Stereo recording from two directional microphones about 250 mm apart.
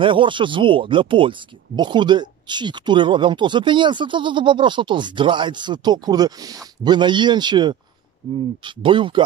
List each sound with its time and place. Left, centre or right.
0.0 s speech: centre